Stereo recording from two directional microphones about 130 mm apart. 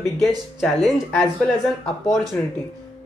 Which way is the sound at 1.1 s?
15° left (ahead or behind).